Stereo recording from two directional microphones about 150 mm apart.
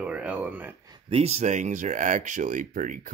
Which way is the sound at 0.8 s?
30° right (ahead or behind).